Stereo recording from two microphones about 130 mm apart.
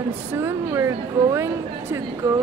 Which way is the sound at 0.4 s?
20° right (ahead or behind).